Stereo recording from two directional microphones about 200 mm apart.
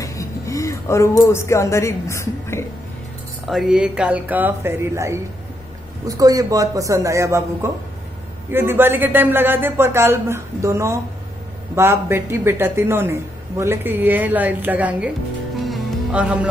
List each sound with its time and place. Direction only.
0.0 s speech: 15° left (ahead or behind)
3.4 s speech: centre (ahead or behind)
8.5 s speech: 10° right (ahead or behind)
15.6 s music: centre (ahead or behind)